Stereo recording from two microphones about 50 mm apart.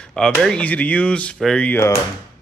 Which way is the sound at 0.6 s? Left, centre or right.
Left.